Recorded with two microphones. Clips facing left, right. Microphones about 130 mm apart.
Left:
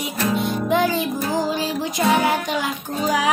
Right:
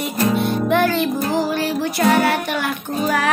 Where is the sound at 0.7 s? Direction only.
15° left (ahead or behind).